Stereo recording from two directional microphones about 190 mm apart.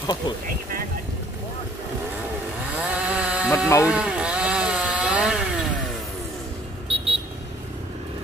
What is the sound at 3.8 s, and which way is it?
Chainsaw, 5° right (ahead or behind).